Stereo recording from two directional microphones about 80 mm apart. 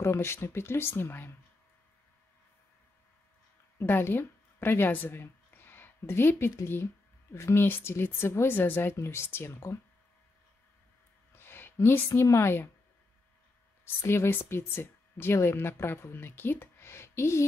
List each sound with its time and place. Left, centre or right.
0.0 s speech: left
3.7 s speech: left
11.3 s speech: left
14.0 s speech: left